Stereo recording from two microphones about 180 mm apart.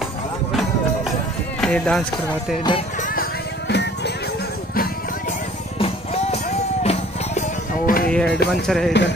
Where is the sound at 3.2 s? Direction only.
70° left (ahead or behind).